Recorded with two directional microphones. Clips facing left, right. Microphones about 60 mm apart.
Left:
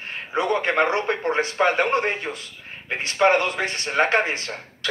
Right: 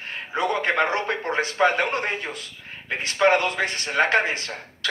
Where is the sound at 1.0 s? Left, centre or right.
Left.